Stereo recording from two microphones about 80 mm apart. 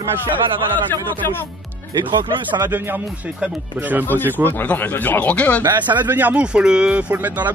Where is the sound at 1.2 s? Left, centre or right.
Left.